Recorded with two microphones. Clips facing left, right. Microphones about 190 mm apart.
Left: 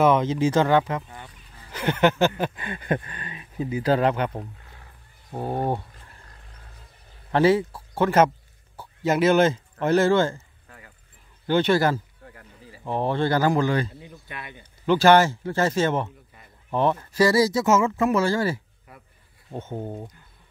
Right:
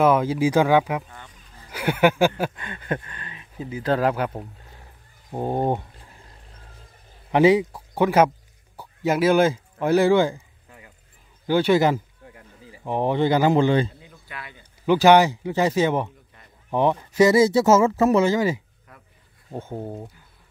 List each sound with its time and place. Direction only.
0.0 s speech: 5° right (ahead or behind)
2.5 s speech: 10° left (ahead or behind)
3.9 s speech: 5° right (ahead or behind)
5.3 s speech: 20° right (ahead or behind)
7.2 s speech: 15° right (ahead or behind)
8.7 s a sound: 10° right (ahead or behind)
11.4 s speech: 10° right (ahead or behind)
14.0 s a sound: 20° left (ahead or behind)
14.9 s speech: 15° right (ahead or behind); by 18.1 s 40° right (ahead or behind)
18.1 s speech: 20° right (ahead or behind)